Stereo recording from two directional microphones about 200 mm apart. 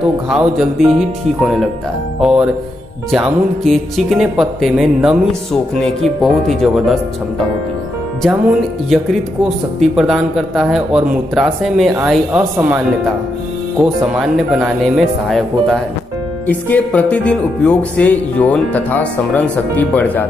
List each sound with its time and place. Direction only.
0.3 s speech: centre (ahead or behind)
8.9 s speech: centre (ahead or behind)
14.1 s speech: 5° right (ahead or behind)
16.4 s music: 5° left (ahead or behind)